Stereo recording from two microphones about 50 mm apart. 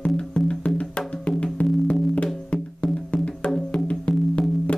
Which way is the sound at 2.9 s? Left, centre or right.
Left.